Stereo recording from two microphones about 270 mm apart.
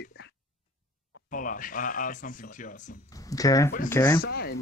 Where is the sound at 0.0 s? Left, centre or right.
Left.